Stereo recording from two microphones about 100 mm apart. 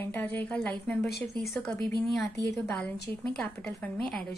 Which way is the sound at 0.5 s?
10° left (ahead or behind).